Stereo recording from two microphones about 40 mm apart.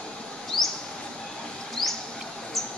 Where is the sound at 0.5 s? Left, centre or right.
Centre.